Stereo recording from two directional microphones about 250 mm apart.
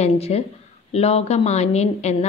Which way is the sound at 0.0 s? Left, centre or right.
Left.